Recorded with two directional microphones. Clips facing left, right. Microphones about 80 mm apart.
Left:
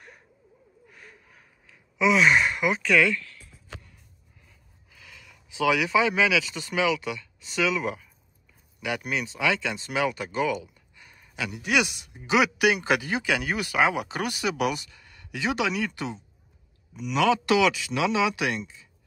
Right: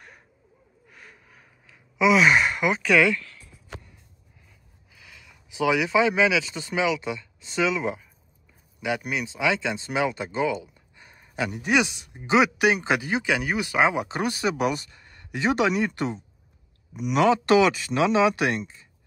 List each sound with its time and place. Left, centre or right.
0.8 s sigh: centre
4.5 s speech: centre; by 17.3 s right
17.3 s speech: right